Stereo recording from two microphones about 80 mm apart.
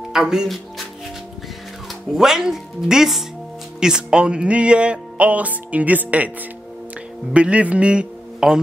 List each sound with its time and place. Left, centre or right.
0.1 s speech: centre
2.1 s speech: centre
3.8 s music: centre
7.3 s a man's voice: centre